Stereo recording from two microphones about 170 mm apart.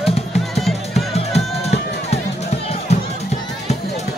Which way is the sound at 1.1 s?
40° left (ahead or behind).